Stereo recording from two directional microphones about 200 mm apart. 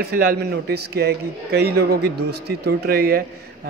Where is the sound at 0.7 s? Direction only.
55° right (ahead or behind).